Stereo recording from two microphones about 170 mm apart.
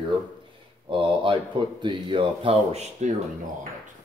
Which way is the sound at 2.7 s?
40° right (ahead or behind).